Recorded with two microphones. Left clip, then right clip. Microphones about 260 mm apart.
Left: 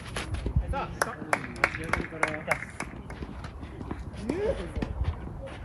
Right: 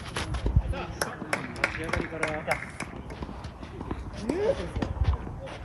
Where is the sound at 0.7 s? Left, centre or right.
Centre.